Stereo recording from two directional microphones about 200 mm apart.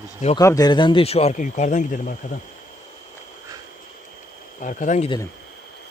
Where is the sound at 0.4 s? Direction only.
15° left (ahead or behind); by 2.1 s 40° left (ahead or behind).